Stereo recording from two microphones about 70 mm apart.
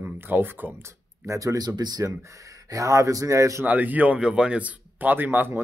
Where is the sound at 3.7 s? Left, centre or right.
Right.